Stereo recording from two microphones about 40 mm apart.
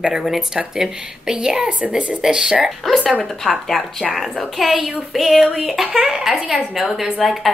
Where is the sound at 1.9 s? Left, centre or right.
Right.